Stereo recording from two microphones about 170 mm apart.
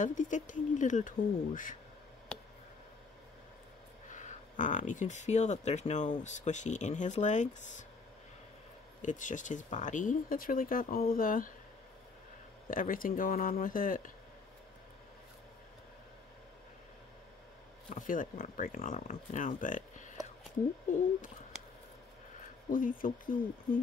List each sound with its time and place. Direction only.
0.0 s speech: 50° left (ahead or behind)
4.1 s speech: 45° left (ahead or behind)
9.0 s speech: 45° left (ahead or behind)
12.6 s speech: 55° left (ahead or behind)
17.8 s speech: 50° left (ahead or behind)
22.7 s speech: 55° left (ahead or behind)